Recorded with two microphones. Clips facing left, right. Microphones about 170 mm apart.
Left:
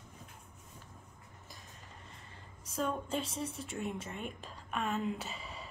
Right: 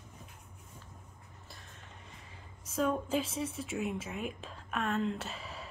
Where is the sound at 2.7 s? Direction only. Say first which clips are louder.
Right 4 dB; 5° right (ahead or behind).